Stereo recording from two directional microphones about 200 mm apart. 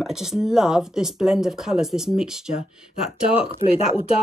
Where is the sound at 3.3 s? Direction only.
30° left (ahead or behind).